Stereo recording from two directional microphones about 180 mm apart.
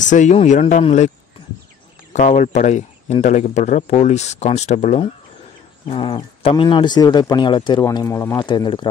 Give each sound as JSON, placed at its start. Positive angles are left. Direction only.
{"t": 0.0, "sound": "speech", "side_deg": 45}
{"t": 2.1, "sound": "speech", "side_deg": 45}